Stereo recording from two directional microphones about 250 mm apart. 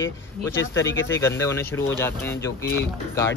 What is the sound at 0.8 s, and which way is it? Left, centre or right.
Speech, left.